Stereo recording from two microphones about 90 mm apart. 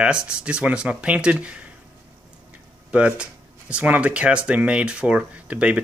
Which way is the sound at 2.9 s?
15° right (ahead or behind).